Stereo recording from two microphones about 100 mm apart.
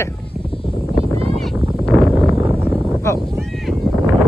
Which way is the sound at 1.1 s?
75° right (ahead or behind).